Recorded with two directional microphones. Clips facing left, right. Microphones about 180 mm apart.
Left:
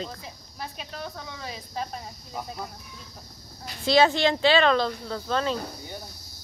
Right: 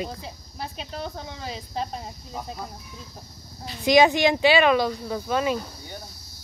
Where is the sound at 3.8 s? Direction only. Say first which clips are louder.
Right 3 dB; 15° right (ahead or behind).